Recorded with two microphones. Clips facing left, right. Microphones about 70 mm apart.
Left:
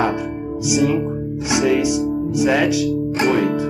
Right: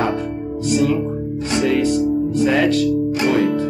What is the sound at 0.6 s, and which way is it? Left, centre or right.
Speech, centre.